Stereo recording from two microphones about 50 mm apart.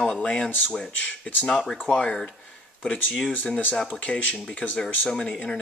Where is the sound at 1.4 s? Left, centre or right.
Centre; by 4.8 s left.